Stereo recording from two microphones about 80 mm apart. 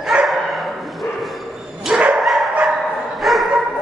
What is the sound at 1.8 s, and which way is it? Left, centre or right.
Dog, centre.